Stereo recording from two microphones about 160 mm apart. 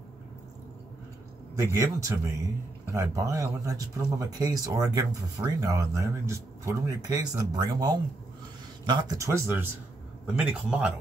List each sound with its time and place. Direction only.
1.6 s a man's voice: 20° right (ahead or behind)